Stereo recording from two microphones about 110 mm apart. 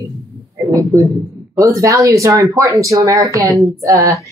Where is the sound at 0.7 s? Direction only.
30° right (ahead or behind).